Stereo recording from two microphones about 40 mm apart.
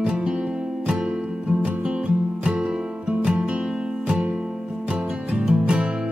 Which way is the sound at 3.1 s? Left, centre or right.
Right.